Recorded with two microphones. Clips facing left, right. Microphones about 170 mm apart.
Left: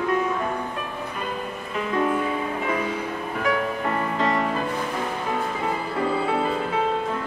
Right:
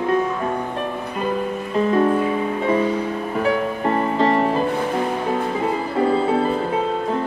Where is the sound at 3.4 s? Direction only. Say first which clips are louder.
Right 4 dB; 30° right (ahead or behind).